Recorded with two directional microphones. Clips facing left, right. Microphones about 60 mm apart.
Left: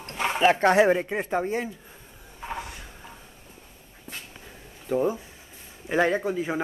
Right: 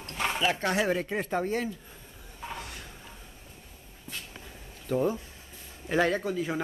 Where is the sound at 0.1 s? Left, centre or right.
Centre.